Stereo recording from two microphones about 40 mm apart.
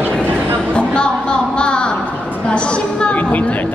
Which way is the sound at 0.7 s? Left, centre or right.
Left.